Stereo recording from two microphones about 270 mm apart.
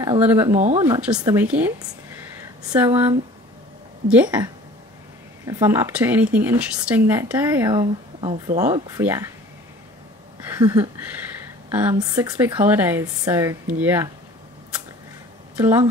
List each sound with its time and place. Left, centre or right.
0.0 s speech: centre
0.6 s speech: right
0.8 s speech: centre
4.1 s speech: centre
5.5 s speech: centre
10.6 s speech: centre
15.5 s speech: centre